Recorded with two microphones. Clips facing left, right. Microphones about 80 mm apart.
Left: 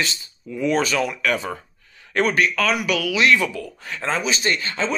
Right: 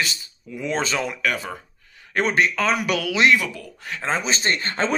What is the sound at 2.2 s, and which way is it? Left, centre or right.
Speech, right.